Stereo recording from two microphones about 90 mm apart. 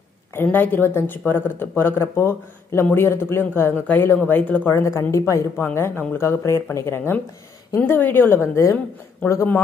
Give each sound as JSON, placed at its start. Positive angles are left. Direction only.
{"t": 0.3, "sound": "speech", "side_deg": 25}
{"t": 9.2, "sound": "speech", "side_deg": 20}